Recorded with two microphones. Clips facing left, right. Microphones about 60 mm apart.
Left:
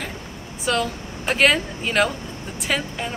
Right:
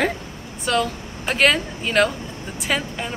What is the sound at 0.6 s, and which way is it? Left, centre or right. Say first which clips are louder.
Speech: right 1 dB; centre.